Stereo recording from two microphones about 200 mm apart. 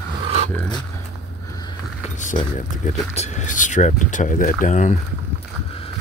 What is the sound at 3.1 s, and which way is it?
Speech, 35° left (ahead or behind).